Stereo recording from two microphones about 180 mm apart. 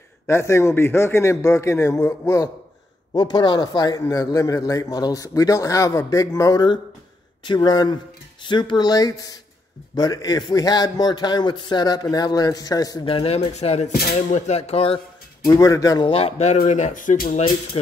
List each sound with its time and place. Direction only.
0.3 s a man's voice: 15° left (ahead or behind); by 15.0 s 35° left (ahead or behind)
15.4 s speech: 15° left (ahead or behind)
16.1 s speech: 35° left (ahead or behind)